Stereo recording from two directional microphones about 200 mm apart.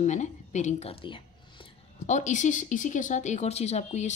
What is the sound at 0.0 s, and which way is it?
Speech, 35° left (ahead or behind).